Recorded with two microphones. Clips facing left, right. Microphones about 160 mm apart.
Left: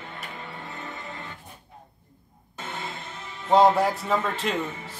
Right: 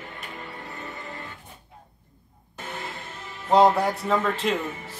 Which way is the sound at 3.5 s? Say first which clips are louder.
Even; centre (ahead or behind).